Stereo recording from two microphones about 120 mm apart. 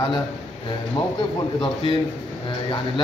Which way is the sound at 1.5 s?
40° left (ahead or behind).